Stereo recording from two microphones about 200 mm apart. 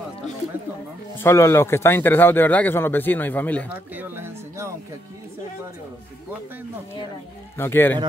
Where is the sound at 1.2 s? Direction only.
15° left (ahead or behind).